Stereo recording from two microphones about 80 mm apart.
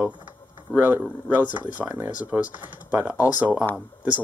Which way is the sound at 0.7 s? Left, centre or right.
Right.